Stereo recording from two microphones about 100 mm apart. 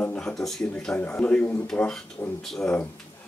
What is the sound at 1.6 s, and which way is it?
Speech, 5° left (ahead or behind).